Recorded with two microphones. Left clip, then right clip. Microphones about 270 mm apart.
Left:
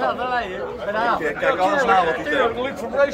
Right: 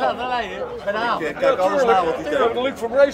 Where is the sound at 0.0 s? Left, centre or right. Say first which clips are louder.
Even; right.